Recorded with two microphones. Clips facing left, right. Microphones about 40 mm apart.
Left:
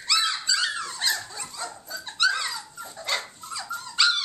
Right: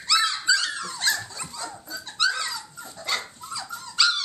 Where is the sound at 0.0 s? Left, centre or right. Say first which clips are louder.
Right 2 dB; centre.